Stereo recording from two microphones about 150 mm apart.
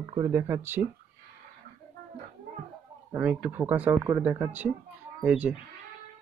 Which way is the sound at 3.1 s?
10° right (ahead or behind).